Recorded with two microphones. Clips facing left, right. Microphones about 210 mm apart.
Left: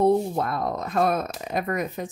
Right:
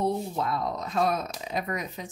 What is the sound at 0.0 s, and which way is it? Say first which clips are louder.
Speech: left 7 dB; 55° left (ahead or behind).